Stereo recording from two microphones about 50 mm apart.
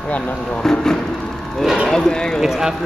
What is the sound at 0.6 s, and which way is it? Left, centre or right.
Speech, centre.